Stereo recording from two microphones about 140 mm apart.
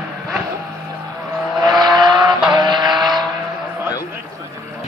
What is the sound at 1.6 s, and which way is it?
Vehicle, 30° right (ahead or behind).